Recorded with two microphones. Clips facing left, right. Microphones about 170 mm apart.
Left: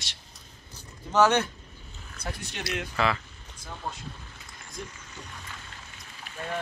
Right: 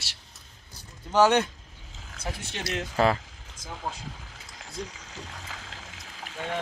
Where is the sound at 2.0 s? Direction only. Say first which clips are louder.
Right 1 dB; 90° right.